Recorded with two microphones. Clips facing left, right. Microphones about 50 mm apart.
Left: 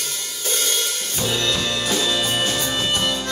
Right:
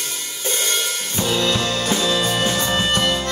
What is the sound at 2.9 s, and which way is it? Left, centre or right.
Music, right.